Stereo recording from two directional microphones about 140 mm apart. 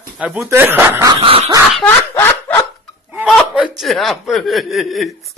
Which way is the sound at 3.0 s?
10° right (ahead or behind).